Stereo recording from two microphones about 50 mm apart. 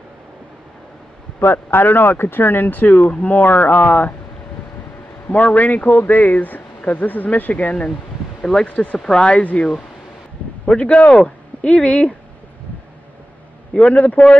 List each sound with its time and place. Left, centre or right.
1.4 s speech: left
5.3 s speech: left
8.4 s speech: centre
9.3 s speech: left
13.7 s speech: left